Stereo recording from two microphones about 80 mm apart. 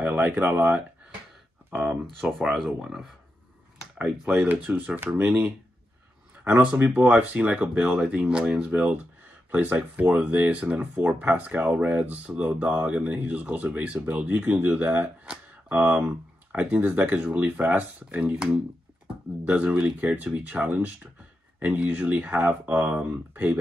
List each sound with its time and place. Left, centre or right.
0.0 s speech: right
2.5 s speech: centre
4.3 s speech: centre
6.5 s speech: centre
15.2 s a sound: centre
16.5 s speech: right